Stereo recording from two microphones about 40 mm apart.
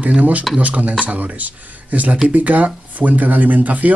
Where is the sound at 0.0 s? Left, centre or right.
Right.